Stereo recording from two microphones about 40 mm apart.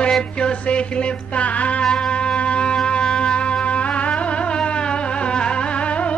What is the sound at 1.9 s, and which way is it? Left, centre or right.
Music, centre.